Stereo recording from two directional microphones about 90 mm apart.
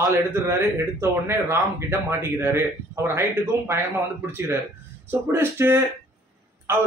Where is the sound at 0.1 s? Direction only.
30° right (ahead or behind).